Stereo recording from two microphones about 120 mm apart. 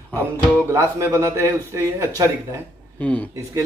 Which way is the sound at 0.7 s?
25° right (ahead or behind).